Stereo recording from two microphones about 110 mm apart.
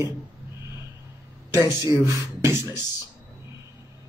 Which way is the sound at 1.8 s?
40° left (ahead or behind).